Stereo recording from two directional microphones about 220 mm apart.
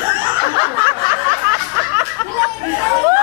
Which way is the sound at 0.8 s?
10° right (ahead or behind).